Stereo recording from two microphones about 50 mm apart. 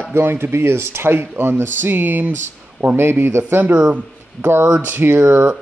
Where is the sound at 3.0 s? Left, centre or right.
Right.